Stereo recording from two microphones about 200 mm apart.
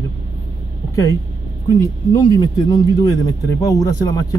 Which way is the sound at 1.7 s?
20° left (ahead or behind).